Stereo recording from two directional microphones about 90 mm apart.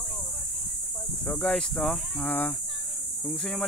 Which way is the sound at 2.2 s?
20° left (ahead or behind).